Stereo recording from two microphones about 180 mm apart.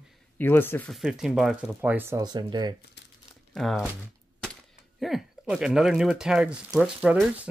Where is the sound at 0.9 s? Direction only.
5° right (ahead or behind).